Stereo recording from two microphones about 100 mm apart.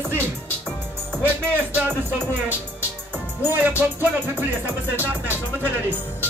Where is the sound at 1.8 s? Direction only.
20° right (ahead or behind).